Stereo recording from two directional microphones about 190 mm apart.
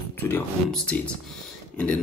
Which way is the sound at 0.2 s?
10° left (ahead or behind).